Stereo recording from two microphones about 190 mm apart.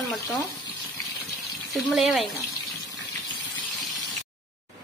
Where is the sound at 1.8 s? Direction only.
Centre (ahead or behind).